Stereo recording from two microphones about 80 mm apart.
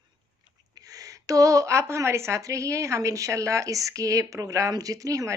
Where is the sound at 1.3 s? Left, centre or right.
Right.